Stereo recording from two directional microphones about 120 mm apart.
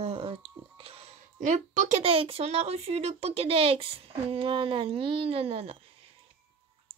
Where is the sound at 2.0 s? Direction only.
50° right (ahead or behind).